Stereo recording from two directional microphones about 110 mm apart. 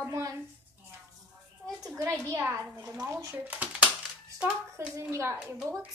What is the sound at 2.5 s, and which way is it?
Speech, 10° right (ahead or behind).